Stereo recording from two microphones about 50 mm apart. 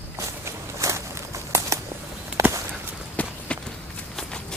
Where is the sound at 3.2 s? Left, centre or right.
Left.